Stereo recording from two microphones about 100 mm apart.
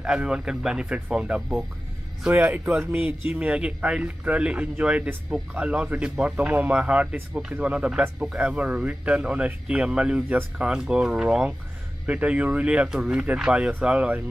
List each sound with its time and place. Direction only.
0.0 s a man's voice: 10° right (ahead or behind)